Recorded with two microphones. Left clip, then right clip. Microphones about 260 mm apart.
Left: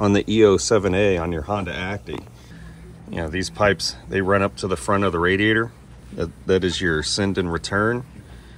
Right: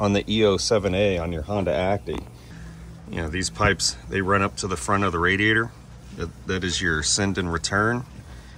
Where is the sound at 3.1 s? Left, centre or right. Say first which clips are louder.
Left 2 dB; centre.